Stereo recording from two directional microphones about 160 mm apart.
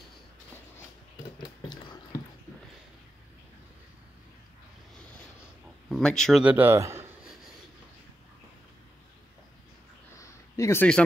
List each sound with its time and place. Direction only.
1.8 s drip: 30° left (ahead or behind)
5.9 s speech: centre (ahead or behind)
6.4 s speech: 10° right (ahead or behind)
10.1 s a sound: 20° left (ahead or behind)